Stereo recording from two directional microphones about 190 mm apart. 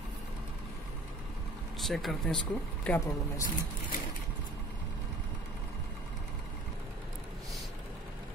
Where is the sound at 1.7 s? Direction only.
Centre (ahead or behind).